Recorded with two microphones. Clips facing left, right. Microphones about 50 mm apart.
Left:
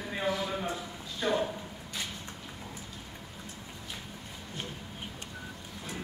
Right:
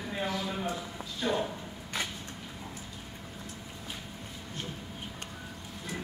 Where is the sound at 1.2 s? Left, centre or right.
Centre.